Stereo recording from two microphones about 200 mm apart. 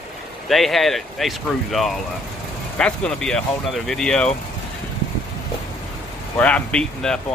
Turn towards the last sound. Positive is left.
turn(degrees=5)  # may be behind; listen again after turning